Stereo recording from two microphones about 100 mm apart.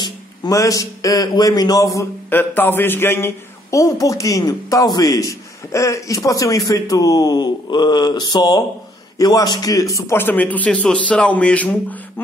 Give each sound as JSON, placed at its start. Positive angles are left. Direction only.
{"t": 0.0, "sound": "speech", "side_deg": 40}
{"t": 2.2, "sound": "a man's voice", "side_deg": 20}